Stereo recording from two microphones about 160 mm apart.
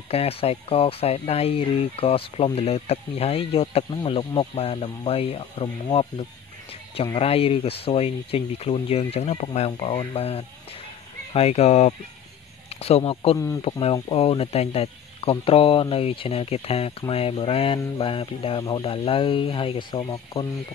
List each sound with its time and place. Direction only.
0.1 s speech: 40° left (ahead or behind)